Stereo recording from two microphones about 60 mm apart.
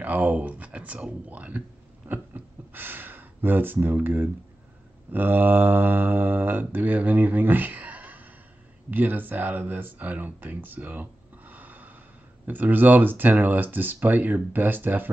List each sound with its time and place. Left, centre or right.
0.0 s speech: right
2.0 s a sound: right
5.1 s speech: right